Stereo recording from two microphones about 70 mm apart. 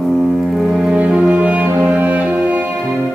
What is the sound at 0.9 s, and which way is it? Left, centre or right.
Music, centre.